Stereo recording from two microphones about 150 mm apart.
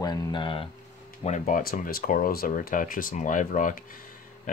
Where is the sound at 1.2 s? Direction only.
55° left (ahead or behind).